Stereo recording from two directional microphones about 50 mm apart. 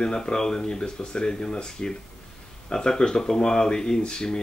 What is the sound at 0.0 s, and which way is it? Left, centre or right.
Speech, centre.